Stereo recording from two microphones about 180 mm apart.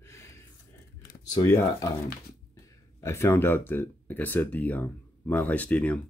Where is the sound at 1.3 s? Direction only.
20° left (ahead or behind).